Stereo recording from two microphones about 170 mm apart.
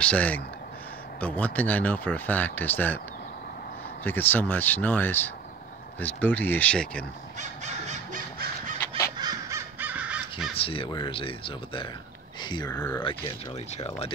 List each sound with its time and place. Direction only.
0.0 s speech: 5° left (ahead or behind)
4.0 s speech: 10° left (ahead or behind)
7.3 s crow: 45° right (ahead or behind)
8.8 s crow: 15° left (ahead or behind)
9.2 s crow: 20° right (ahead or behind)
10.5 s speech: 35° left (ahead or behind)
13.2 s speech: 35° left (ahead or behind)